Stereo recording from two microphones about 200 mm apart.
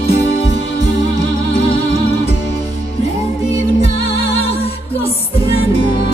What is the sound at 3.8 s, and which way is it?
Music, 30° left (ahead or behind).